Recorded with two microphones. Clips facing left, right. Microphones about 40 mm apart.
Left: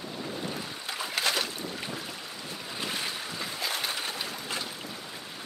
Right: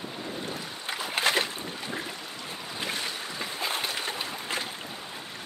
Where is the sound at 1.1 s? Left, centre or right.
Right.